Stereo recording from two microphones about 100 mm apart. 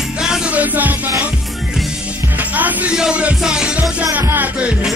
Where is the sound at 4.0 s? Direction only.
20° right (ahead or behind).